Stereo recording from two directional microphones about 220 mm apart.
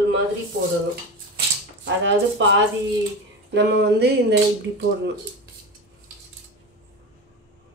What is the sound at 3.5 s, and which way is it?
Speech, 50° right (ahead or behind).